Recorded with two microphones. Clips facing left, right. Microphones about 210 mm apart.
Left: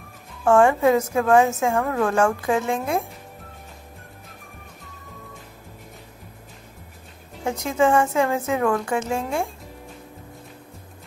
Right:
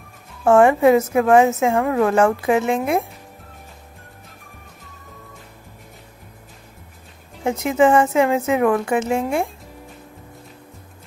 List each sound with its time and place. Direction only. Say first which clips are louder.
0.5 s a woman's voice: right 4 dB; 15° right (ahead or behind)
7.6 s a woman's voice: right 4 dB; 15° right (ahead or behind)